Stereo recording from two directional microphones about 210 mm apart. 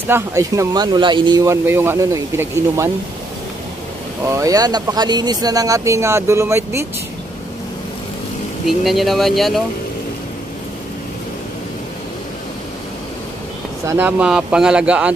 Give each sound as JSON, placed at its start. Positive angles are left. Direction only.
{"t": 0.1, "sound": "speech", "side_deg": -15}
{"t": 4.3, "sound": "speech", "side_deg": -15}
{"t": 8.6, "sound": "speech", "side_deg": 0}
{"t": 13.8, "sound": "speech", "side_deg": -10}